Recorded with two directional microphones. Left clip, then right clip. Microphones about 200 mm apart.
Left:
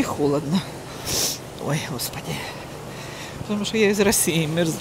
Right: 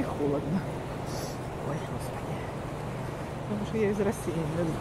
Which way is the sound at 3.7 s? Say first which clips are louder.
Left 9 dB; 50° left (ahead or behind).